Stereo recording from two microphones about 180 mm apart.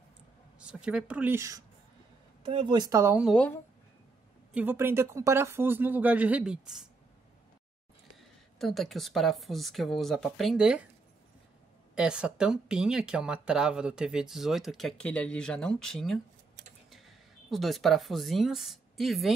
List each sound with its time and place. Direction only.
0.6 s speech: 5° right (ahead or behind)
2.5 s speech: 25° right (ahead or behind)
3.3 s speech: 5° left (ahead or behind)
4.6 s speech: 10° right (ahead or behind)
8.5 s speech: centre (ahead or behind)
11.9 s speech: 5° right (ahead or behind)